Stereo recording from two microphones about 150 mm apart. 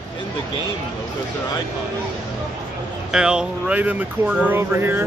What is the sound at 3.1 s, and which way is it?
Speech, 5° right (ahead or behind).